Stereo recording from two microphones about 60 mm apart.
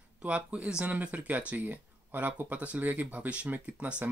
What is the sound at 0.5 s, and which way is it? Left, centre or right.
Speech, centre.